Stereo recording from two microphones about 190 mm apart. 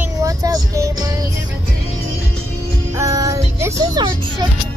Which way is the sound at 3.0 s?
20° right (ahead or behind).